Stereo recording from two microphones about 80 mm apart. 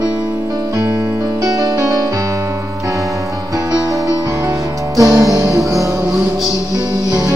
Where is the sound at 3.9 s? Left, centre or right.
Right.